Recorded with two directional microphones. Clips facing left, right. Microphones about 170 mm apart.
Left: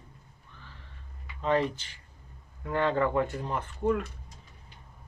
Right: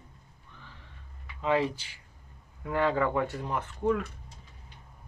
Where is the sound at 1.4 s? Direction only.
10° right (ahead or behind).